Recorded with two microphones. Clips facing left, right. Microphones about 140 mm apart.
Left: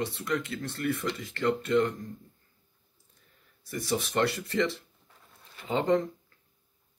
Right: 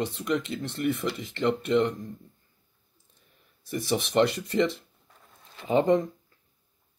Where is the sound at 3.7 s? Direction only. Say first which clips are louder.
Right 3 dB; 15° right (ahead or behind).